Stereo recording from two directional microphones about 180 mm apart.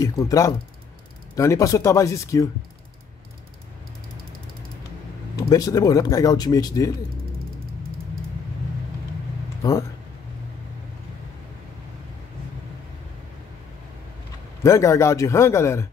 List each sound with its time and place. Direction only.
0.0 s speech: 20° left (ahead or behind)
5.5 s speech: 20° left (ahead or behind)
9.6 s speech: 15° left (ahead or behind)
14.6 s speech: 15° left (ahead or behind)